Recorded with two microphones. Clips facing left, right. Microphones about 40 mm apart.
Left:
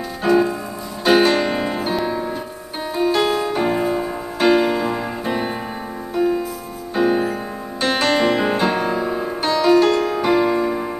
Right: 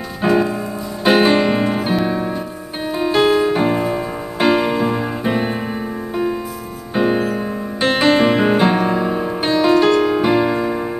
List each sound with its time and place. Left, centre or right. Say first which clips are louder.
0.2 s music: right 1 dB; centre
3.7 s piano: right 1 dB; centre
4.4 s music: even; centre